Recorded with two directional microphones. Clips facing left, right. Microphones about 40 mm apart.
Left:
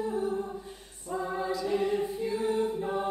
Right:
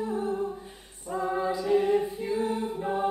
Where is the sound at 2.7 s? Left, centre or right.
Centre.